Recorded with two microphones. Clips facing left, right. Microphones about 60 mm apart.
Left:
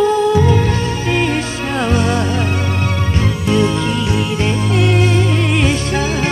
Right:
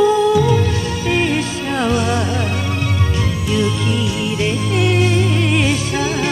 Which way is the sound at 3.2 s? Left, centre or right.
Left.